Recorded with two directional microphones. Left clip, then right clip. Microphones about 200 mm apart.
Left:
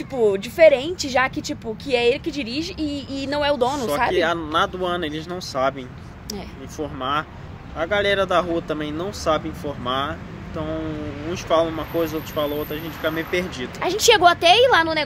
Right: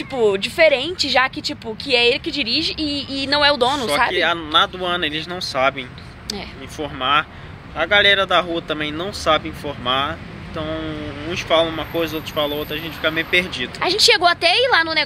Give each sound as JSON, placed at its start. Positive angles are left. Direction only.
{"t": 0.1, "sound": "speech", "side_deg": 5}
{"t": 4.1, "sound": "speech", "side_deg": 15}
{"t": 13.7, "sound": "speech", "side_deg": 0}